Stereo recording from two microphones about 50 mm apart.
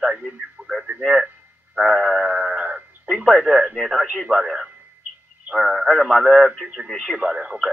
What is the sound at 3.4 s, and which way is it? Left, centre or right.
Speech, centre.